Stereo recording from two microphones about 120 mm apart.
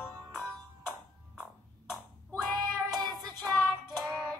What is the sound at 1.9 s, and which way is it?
Child singing, centre (ahead or behind).